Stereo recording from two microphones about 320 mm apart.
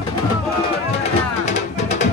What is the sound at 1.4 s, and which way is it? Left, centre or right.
Music, left.